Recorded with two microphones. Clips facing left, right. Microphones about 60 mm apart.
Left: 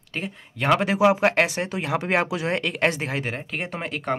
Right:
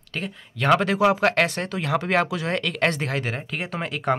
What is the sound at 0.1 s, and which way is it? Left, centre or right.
Speech, centre.